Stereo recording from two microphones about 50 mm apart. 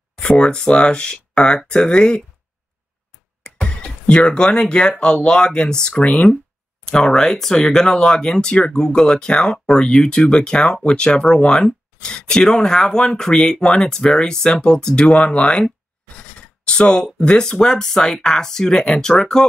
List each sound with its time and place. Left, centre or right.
0.2 s speech: centre
3.5 s speech: left
6.9 s speech: centre